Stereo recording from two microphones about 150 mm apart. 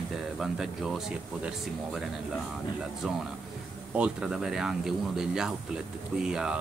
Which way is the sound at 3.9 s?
5° right (ahead or behind).